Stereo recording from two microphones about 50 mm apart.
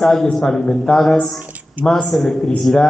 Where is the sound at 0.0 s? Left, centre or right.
Centre.